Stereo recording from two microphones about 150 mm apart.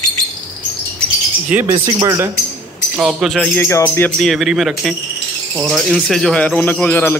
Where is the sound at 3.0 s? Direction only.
5° right (ahead or behind).